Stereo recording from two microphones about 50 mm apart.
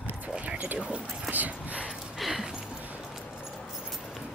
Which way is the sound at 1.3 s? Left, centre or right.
Right.